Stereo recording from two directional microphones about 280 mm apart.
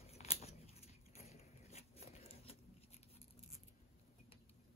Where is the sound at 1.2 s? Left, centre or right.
Left.